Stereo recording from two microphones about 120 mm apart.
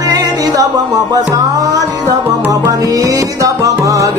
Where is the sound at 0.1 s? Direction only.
35° right (ahead or behind).